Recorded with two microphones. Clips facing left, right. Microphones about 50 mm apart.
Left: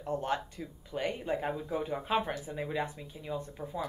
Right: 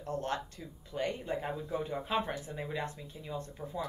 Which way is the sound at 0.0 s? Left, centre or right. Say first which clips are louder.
Left 3 dB; centre.